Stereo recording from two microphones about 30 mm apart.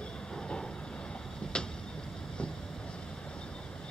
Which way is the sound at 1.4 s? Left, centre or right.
Left.